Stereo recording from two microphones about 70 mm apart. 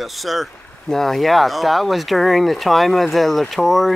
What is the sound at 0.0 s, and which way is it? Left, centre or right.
Speech, centre.